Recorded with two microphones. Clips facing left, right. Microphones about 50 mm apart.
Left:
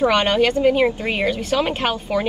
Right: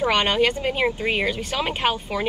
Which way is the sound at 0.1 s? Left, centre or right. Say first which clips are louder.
Left 3 dB; right.